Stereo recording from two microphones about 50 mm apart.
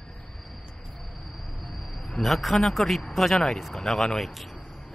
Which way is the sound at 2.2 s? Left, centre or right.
Centre.